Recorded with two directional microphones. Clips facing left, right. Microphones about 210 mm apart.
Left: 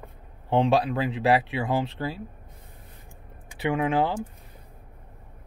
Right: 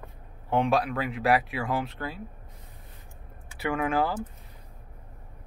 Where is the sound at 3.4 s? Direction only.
20° left (ahead or behind).